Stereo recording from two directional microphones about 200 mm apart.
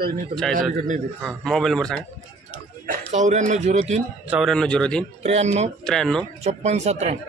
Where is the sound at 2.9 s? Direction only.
35° right (ahead or behind).